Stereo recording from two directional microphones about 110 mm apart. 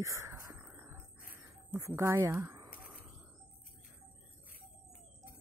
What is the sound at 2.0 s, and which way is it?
Speech, 25° right (ahead or behind).